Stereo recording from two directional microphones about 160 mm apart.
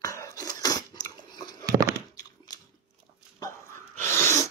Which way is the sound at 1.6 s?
20° right (ahead or behind).